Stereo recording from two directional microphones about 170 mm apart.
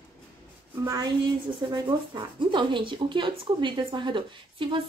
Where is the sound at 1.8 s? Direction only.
25° right (ahead or behind).